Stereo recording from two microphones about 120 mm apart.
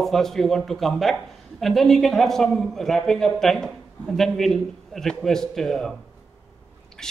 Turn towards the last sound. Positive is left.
turn(degrees=5)  # may be behind; listen again after turning